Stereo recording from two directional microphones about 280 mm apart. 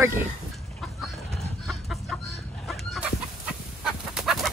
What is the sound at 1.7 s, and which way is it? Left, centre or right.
Chicken, centre.